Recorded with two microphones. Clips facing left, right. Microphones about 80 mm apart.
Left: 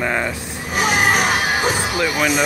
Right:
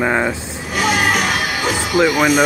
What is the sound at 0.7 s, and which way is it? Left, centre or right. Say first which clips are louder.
Speech: even; left.